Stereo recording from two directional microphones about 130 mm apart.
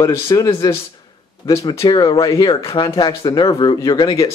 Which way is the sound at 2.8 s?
35° left (ahead or behind).